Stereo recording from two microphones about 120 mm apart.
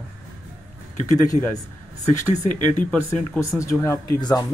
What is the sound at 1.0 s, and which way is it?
Speech, 30° left (ahead or behind).